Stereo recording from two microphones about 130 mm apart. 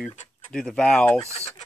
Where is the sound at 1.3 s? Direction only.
55° left (ahead or behind).